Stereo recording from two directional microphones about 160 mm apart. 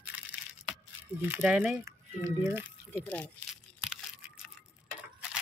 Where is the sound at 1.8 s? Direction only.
20° right (ahead or behind).